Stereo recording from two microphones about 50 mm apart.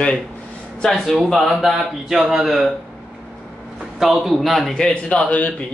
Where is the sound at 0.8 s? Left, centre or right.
Centre.